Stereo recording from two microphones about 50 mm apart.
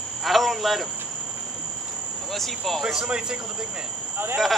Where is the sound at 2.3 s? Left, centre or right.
Centre.